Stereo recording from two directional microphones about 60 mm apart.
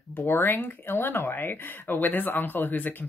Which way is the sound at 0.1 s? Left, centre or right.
Left.